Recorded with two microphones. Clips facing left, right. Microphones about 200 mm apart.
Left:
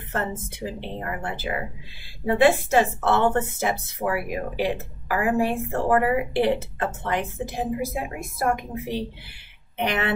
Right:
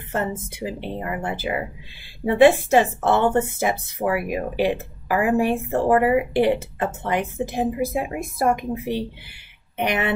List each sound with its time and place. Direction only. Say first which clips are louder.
0.1 s a woman's voice: right 3 dB; 10° right (ahead or behind)